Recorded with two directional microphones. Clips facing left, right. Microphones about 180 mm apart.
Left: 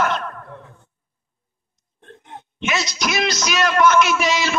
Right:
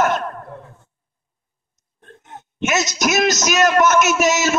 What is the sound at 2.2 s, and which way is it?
A man's voice, 45° right (ahead or behind).